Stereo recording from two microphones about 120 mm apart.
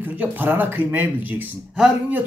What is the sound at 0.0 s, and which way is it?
Speech, 15° right (ahead or behind).